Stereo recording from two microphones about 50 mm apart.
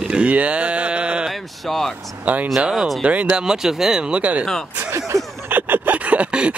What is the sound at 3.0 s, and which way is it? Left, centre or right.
Speech, right.